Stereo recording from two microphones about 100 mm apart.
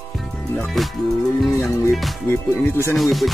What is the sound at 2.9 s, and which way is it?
Speech, centre (ahead or behind).